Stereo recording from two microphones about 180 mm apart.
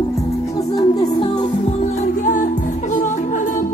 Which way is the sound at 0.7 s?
25° left (ahead or behind).